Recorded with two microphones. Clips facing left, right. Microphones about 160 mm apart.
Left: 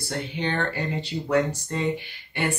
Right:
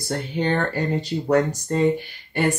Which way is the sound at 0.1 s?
40° right (ahead or behind).